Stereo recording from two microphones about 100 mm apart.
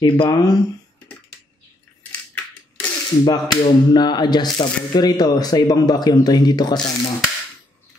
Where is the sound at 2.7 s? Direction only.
15° left (ahead or behind).